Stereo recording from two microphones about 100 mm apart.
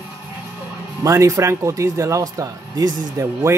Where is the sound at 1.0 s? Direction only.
30° right (ahead or behind).